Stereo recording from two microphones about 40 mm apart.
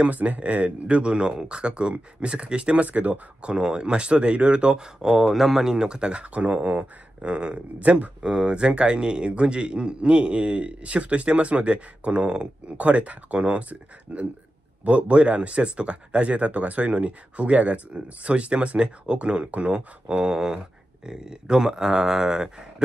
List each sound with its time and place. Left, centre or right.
0.0 s a man's voice: right
5.1 s a man's voice: centre; by 8.1 s right
8.2 s a man's voice: right